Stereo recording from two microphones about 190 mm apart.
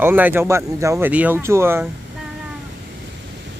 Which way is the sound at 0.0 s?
10° right (ahead or behind).